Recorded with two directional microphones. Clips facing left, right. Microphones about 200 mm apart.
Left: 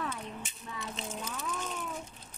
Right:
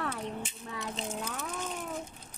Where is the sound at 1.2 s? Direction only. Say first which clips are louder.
Right 1 dB; 45° right (ahead or behind).